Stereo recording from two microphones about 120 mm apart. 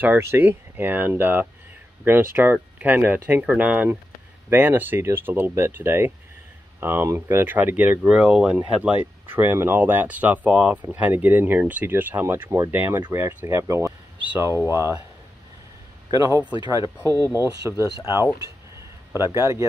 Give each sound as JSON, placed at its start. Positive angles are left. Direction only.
{"t": 0.0, "sound": "speech", "side_deg": -20}
{"t": 16.1, "sound": "speech", "side_deg": -30}